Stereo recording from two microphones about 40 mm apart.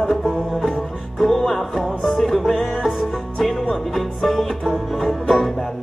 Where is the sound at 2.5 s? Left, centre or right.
Centre.